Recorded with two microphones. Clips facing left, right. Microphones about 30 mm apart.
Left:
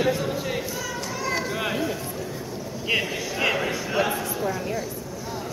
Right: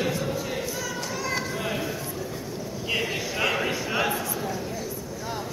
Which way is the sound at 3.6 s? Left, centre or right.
Centre.